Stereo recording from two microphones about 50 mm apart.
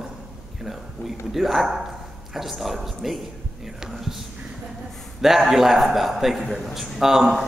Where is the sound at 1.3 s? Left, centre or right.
Centre.